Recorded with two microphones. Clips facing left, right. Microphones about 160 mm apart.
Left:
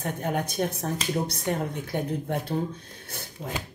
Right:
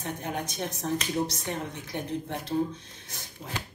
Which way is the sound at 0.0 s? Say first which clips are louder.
Left 5 dB; 55° left (ahead or behind).